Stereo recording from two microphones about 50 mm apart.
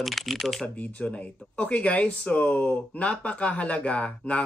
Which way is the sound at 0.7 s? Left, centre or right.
Left.